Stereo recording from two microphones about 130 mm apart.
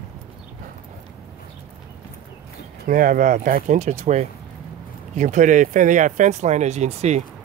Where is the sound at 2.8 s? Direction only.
90° right; by 4.2 s 60° right (ahead or behind).